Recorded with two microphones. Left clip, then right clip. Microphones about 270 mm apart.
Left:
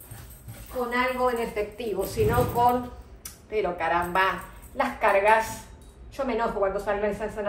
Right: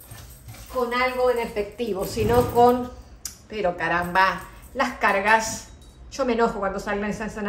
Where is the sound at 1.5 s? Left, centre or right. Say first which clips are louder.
Right 2 dB; right.